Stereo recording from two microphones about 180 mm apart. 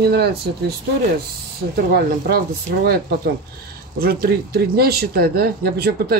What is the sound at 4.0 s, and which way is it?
Speech, 60° right (ahead or behind).